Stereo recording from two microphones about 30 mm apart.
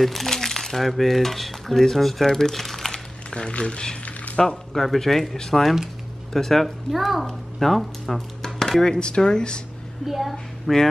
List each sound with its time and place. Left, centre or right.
0.0 s a child's voice: centre
0.3 s speech: centre
3.3 s speech: left
4.4 s speech: centre
6.9 s a child's voice: centre
8.5 s a sound: centre
9.0 s speech: left
10.0 s a child's voice: centre
10.3 s a woman's voice: centre